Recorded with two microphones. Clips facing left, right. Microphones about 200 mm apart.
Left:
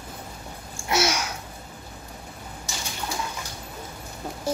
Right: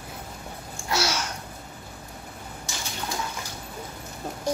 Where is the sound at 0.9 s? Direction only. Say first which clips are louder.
Left 3 dB; 20° left (ahead or behind).